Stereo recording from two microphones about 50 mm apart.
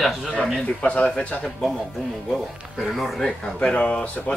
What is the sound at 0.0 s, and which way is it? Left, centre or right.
Speech, centre.